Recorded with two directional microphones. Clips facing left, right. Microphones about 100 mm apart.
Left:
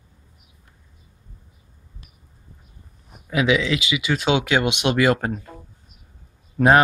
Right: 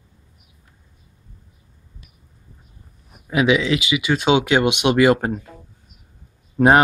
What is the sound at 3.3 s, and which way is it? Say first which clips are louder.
Speech: right 2 dB; 15° right (ahead or behind).